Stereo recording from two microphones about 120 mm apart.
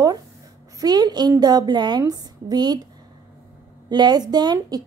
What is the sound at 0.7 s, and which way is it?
A woman's voice, 35° right (ahead or behind).